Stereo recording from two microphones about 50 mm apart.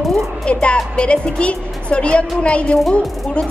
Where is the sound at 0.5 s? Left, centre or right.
Left.